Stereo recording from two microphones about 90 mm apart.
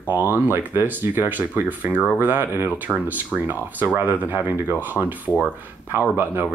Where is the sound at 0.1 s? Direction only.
20° right (ahead or behind).